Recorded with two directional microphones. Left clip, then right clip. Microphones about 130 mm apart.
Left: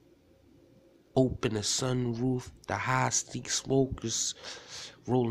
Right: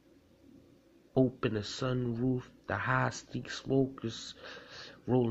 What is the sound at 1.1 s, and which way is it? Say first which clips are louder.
Speech: left 2 dB; 25° left (ahead or behind).